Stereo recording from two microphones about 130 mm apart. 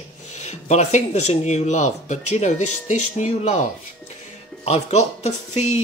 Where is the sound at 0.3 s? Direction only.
60° left (ahead or behind).